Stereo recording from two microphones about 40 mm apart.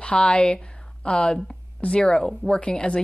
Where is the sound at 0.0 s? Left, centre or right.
Left.